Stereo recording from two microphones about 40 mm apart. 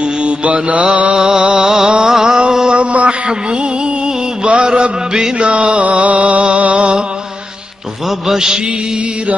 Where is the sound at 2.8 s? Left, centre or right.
Right.